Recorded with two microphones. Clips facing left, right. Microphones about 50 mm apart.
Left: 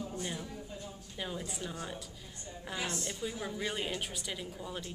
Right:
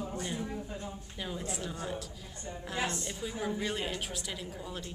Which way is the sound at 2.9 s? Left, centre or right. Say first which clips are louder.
Right 1 dB; centre.